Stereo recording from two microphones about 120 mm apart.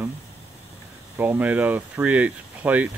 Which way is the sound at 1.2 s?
10° right (ahead or behind).